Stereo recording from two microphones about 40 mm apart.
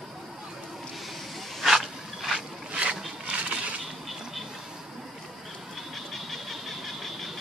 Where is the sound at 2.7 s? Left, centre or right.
Right.